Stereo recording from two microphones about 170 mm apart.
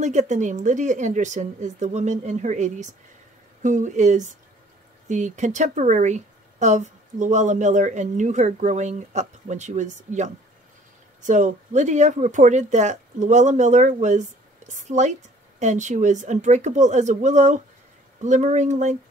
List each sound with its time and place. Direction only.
0.0 s speech: 45° right (ahead or behind)